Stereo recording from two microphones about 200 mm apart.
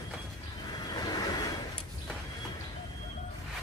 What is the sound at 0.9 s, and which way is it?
Vehicle, 20° left (ahead or behind).